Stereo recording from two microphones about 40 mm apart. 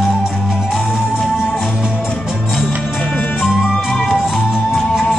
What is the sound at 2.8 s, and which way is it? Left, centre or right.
Music, centre.